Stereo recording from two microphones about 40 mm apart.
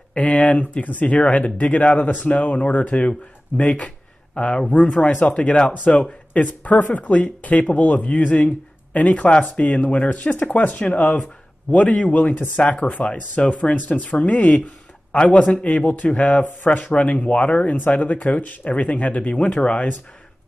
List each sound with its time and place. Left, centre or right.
0.1 s speech: left
10.1 s speech: left